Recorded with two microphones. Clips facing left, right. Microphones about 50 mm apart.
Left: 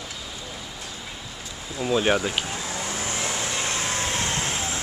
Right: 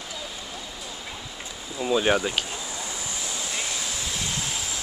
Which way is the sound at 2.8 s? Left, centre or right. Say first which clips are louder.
Left 5 dB; left.